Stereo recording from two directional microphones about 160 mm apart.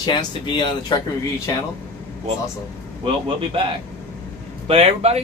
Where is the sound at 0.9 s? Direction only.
30° left (ahead or behind).